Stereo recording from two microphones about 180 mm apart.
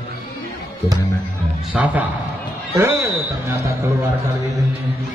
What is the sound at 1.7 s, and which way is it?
A man's voice, 10° right (ahead or behind).